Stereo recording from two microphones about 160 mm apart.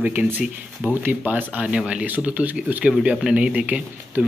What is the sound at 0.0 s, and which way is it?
Speech, 10° right (ahead or behind).